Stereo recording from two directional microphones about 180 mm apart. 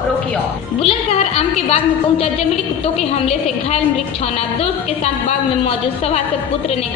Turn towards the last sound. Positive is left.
turn(degrees=40)  # may be behind; listen again after turning